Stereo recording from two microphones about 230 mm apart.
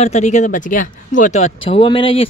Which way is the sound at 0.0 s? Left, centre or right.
Left.